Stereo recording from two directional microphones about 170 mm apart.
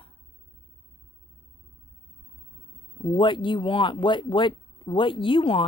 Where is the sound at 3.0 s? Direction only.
30° left (ahead or behind).